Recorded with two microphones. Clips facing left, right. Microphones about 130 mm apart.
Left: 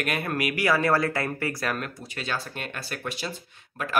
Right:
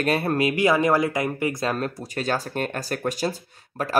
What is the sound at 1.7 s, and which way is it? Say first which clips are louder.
Speech: right 6 dB; 40° right (ahead or behind).